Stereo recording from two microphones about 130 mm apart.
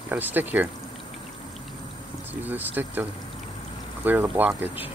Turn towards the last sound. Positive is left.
turn(degrees=-15)  # may be behind; listen again after turning